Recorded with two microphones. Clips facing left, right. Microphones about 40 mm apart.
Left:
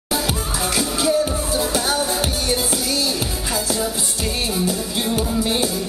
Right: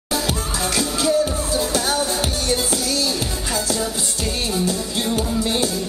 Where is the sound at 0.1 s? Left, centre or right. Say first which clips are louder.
Even; centre.